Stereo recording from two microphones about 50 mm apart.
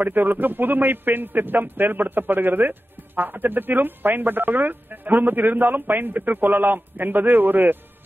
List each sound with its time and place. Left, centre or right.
0.0 s a man's voice: right